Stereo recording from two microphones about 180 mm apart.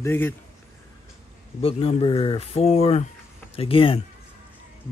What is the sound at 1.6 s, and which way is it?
Speech, 30° left (ahead or behind).